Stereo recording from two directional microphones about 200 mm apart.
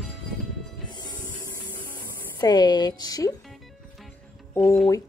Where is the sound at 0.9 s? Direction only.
20° left (ahead or behind).